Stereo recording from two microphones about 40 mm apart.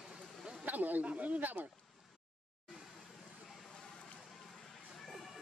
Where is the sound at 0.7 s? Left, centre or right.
Right.